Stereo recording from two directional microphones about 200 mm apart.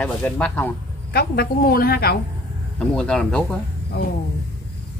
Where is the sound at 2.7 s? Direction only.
5° left (ahead or behind).